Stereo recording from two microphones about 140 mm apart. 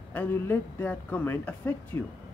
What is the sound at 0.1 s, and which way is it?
Speech, 15° left (ahead or behind).